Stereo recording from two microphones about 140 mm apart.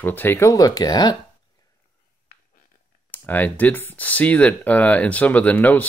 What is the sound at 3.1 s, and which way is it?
Speech, 15° left (ahead or behind).